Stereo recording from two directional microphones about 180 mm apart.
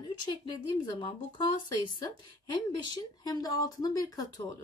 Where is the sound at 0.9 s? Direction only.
25° left (ahead or behind).